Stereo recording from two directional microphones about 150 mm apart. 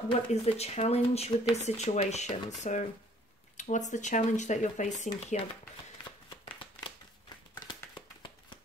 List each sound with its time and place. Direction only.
0.1 s speech: 45° left (ahead or behind)
6.0 s shuffling cards: 35° left (ahead or behind)
7.6 s a sound: 30° left (ahead or behind)